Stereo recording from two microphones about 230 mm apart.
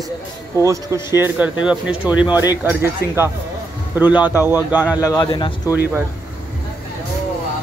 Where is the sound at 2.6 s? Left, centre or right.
Centre.